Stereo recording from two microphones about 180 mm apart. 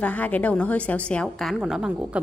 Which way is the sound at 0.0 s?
10° left (ahead or behind).